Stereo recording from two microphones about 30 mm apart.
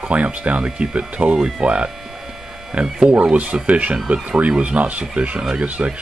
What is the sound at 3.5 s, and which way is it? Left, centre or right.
Speech, right.